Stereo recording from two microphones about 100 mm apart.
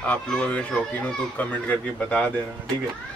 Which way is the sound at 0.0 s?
10° left (ahead or behind).